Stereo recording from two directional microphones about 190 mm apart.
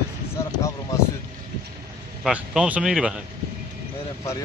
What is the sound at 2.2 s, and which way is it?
Speech, 5° right (ahead or behind).